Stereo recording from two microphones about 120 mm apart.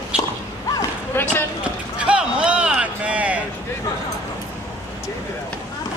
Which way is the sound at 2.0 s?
10° right (ahead or behind).